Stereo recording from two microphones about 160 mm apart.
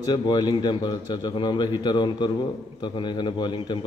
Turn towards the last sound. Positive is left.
turn(degrees=30)  # may be behind; listen again after turning